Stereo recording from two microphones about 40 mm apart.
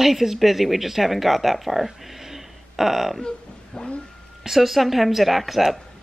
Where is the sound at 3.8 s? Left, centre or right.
Left.